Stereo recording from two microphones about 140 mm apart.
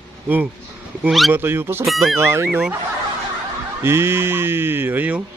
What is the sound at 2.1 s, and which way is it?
Speech, 20° right (ahead or behind).